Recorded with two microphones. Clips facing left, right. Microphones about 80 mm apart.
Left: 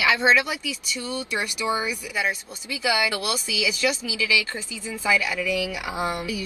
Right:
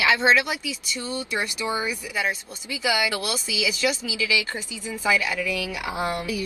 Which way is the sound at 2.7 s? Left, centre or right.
Centre.